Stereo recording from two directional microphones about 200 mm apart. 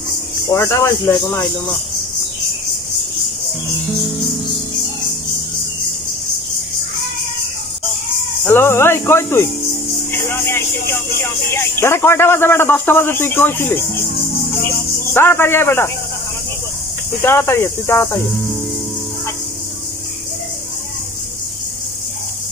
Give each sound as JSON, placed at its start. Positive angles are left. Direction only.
{"t": 0.5, "sound": "speech", "side_deg": 15}
{"t": 8.5, "sound": "speech", "side_deg": 10}
{"t": 10.1, "sound": "a sound", "side_deg": 10}
{"t": 11.1, "sound": "speech", "side_deg": 10}
{"t": 15.1, "sound": "speech", "side_deg": 10}
{"t": 17.2, "sound": "speech", "side_deg": 10}